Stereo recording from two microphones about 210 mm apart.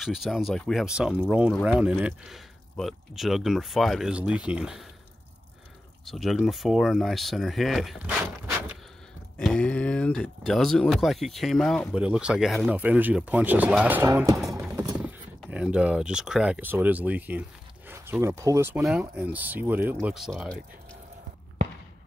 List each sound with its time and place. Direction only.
0.0 s speech: centre (ahead or behind)
6.0 s speech: centre (ahead or behind)
9.4 s speech: 5° left (ahead or behind); by 14.4 s 15° right (ahead or behind)
14.4 s music: centre (ahead or behind)
15.0 s speech: 5° right (ahead or behind)